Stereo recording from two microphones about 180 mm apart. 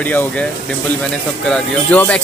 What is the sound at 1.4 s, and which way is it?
Speech, 5° left (ahead or behind).